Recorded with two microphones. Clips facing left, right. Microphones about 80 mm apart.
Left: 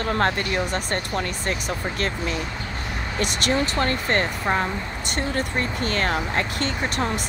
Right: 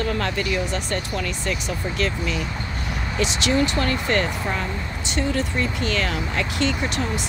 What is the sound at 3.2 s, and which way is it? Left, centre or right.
Speech, left.